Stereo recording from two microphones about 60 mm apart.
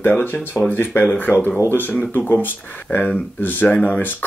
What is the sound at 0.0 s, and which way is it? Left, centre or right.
Speech, left.